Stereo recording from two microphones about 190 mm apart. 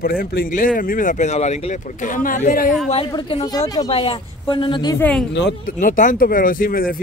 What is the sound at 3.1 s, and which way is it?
Speech, 25° left (ahead or behind).